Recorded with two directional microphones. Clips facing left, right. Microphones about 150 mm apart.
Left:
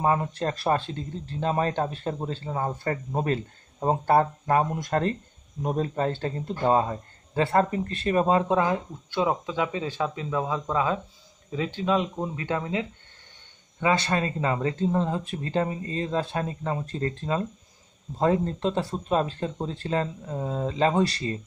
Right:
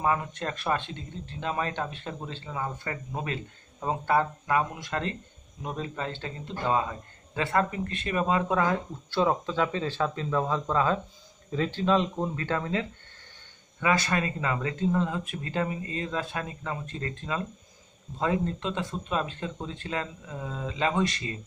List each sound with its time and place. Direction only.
0.0 s speech: 35° left (ahead or behind)
8.5 s speech: 15° left (ahead or behind)
13.7 s speech: 30° left (ahead or behind)